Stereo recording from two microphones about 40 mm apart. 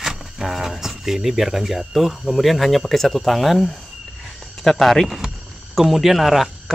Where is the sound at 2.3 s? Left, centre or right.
Centre.